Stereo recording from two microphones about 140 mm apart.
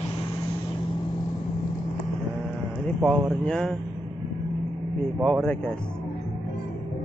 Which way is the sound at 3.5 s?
5° left (ahead or behind).